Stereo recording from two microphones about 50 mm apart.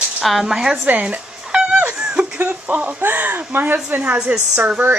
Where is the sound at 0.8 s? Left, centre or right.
Right.